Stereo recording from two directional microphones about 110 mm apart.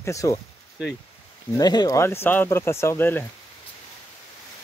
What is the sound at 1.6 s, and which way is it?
Speech, 40° left (ahead or behind).